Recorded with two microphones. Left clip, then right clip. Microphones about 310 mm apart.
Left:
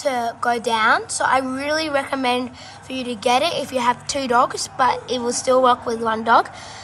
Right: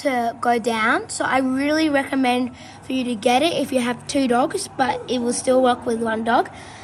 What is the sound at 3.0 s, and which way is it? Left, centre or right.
A woman's voice, left.